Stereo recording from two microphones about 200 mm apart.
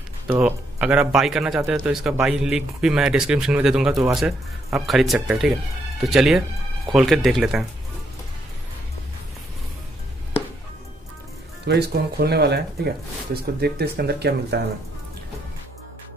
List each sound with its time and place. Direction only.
0.3 s speech: 10° right (ahead or behind)
11.6 s speech: 55° right (ahead or behind)